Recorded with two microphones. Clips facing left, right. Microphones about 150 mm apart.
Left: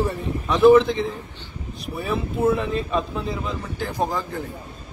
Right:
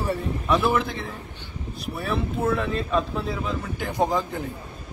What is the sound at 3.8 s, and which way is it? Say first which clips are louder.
Speech: right 1 dB; 15° right (ahead or behind).